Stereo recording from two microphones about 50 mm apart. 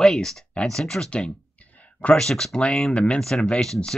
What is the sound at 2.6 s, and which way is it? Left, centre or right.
Speech, left.